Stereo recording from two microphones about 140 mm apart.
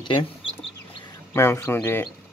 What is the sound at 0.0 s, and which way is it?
Speech, 35° left (ahead or behind).